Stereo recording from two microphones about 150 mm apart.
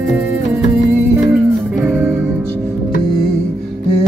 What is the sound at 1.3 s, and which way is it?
Music, 15° right (ahead or behind).